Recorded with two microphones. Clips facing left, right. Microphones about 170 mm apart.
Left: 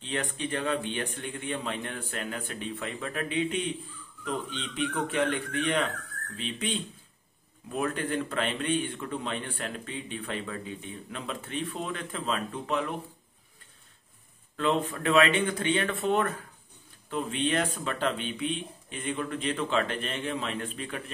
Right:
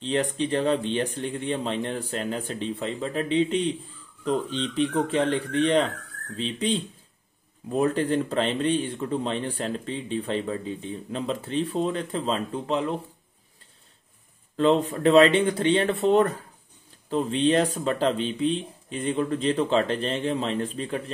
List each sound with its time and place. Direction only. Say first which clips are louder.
0.0 s speech: right 8 dB; 35° right (ahead or behind)
14.6 s speech: right 7 dB; 35° right (ahead or behind)